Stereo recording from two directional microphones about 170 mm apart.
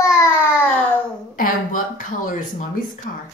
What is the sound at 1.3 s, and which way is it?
A woman's voice, 55° left (ahead or behind).